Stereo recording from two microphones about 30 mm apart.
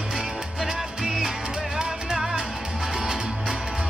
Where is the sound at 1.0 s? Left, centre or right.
Centre.